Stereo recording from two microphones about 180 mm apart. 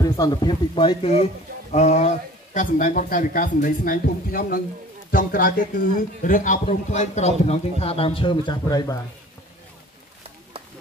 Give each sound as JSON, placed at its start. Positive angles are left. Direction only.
{"t": 0.0, "sound": "a man's voice", "side_deg": 20}